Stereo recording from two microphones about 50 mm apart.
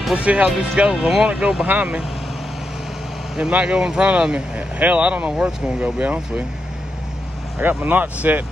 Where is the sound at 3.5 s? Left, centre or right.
Right.